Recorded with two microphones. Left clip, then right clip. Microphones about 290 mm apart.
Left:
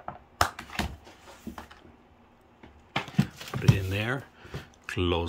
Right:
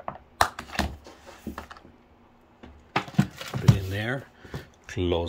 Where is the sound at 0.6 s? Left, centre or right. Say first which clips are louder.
Right 4 dB; centre.